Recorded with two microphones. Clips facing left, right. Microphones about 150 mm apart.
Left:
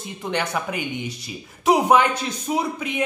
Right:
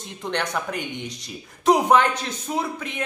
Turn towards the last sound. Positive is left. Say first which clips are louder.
# left 3 dB
turn(degrees=10)  # may be behind; listen again after turning